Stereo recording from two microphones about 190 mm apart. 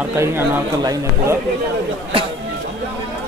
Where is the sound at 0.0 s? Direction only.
15° right (ahead or behind).